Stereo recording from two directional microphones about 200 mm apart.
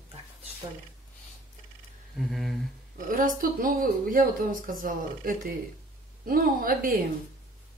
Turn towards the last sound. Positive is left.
turn(degrees=-45)  # may be behind; listen again after turning